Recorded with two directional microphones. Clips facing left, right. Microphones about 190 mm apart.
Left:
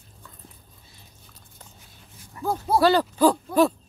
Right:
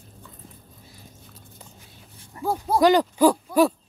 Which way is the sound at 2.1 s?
30° right (ahead or behind).